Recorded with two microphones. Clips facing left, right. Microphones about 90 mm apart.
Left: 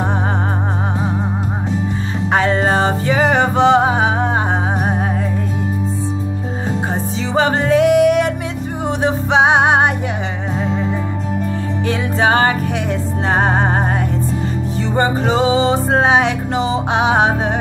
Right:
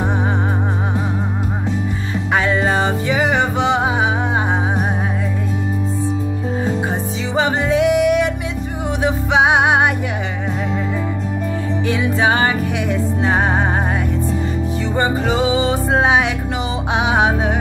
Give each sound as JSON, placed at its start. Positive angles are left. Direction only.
{"t": 2.3, "sound": "music", "side_deg": 35}
{"t": 7.3, "sound": "music", "side_deg": 40}
{"t": 11.9, "sound": "music", "side_deg": 40}
{"t": 15.0, "sound": "music", "side_deg": 35}